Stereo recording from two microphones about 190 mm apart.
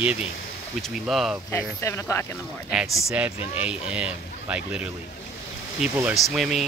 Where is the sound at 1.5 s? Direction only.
15° left (ahead or behind).